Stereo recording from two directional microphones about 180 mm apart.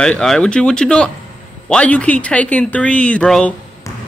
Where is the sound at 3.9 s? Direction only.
15° left (ahead or behind).